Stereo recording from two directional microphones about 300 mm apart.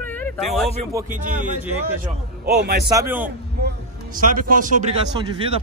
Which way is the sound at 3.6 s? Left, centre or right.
Right.